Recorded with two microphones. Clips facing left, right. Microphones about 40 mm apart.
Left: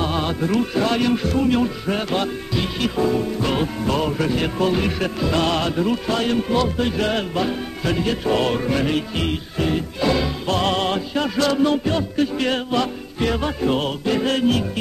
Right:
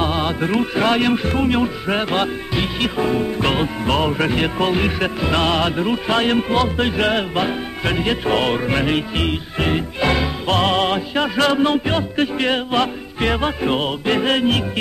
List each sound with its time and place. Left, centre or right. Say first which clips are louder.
0.0 s music: right 2 dB; right
0.7 s speech: right 5 dB; right
9.6 s music: right 2 dB; right
10.6 s speech: right 3 dB; right